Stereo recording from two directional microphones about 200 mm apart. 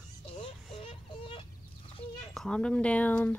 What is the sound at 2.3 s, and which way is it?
Speech, 5° left (ahead or behind).